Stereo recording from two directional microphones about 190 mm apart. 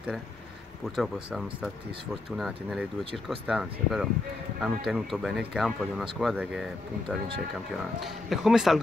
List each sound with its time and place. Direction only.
0.8 s speech: centre (ahead or behind)